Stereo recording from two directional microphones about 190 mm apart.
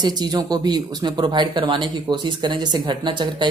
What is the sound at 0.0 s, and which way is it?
Speech, 20° right (ahead or behind).